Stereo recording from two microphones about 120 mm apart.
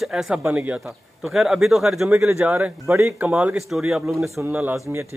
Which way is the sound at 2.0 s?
20° right (ahead or behind).